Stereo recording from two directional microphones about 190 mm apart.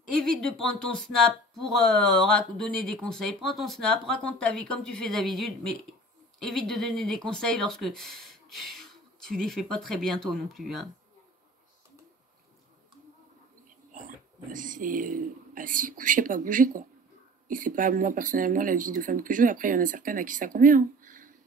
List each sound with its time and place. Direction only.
0.1 s speech: centre (ahead or behind)
13.9 s speech: 45° right (ahead or behind)